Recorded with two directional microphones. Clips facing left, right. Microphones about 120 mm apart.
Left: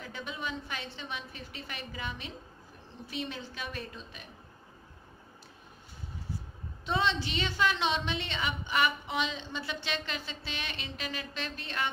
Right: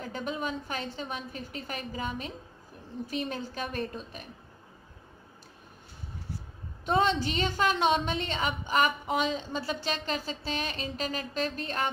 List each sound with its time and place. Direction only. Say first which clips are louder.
0.0 s a woman's voice: right 6 dB; 45° right (ahead or behind)
6.9 s a woman's voice: right 5 dB; 45° right (ahead or behind)